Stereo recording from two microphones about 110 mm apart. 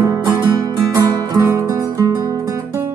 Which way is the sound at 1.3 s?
25° right (ahead or behind).